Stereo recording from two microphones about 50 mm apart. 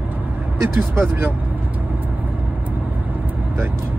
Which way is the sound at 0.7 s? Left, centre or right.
Right.